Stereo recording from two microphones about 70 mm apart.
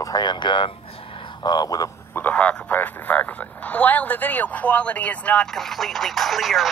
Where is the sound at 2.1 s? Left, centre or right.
Left.